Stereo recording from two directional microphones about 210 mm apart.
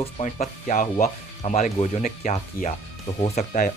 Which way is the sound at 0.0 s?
30° left (ahead or behind).